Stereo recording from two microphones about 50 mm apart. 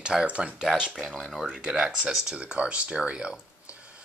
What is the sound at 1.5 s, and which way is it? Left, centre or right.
Speech, centre.